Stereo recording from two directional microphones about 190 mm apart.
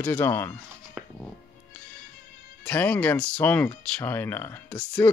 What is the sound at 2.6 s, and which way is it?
Speech, 5° left (ahead or behind).